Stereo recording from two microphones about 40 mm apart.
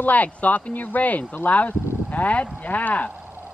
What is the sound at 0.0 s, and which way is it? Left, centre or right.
Speech, left.